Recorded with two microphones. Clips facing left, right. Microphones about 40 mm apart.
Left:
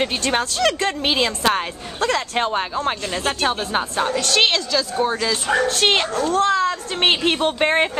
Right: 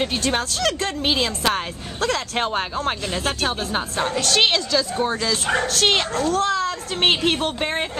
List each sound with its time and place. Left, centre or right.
0.3 s speech: centre
3.7 s speech: centre
4.2 s speech: centre
7.6 s speech: left